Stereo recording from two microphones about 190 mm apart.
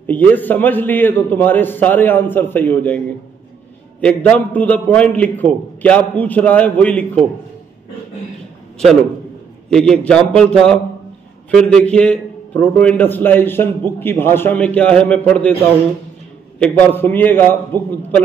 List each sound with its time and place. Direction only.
0.0 s a man's voice: 10° left (ahead or behind)
4.0 s a man's voice: 10° left (ahead or behind)
9.7 s a man's voice: 5° left (ahead or behind)
16.5 s a man's voice: 5° left (ahead or behind)